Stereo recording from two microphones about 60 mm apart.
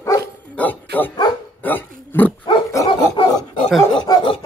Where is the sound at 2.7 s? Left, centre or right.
Left.